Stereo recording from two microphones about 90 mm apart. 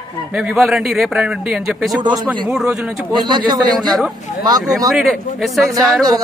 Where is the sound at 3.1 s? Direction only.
55° right (ahead or behind).